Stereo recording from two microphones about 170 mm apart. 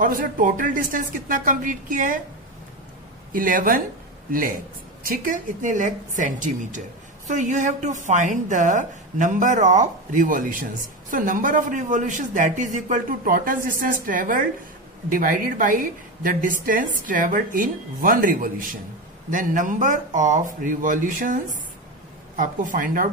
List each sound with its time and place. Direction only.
0.0 s a woman's voice: 55° right (ahead or behind)
3.3 s a woman's voice: 55° right (ahead or behind)
22.4 s a woman's voice: 50° right (ahead or behind)